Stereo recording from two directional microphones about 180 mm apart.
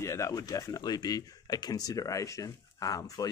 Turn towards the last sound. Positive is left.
turn(degrees=20)  # may be behind; listen again after turning